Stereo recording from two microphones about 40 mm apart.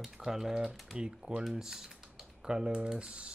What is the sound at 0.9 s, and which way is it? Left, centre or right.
Speech, right.